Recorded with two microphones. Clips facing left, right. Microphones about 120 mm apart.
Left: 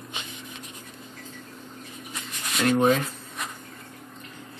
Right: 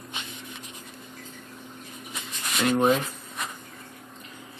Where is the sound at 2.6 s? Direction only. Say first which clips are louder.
Left 1 dB; centre (ahead or behind).